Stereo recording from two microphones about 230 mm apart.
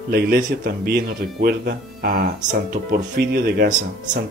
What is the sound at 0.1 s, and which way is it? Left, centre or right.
Speech, right.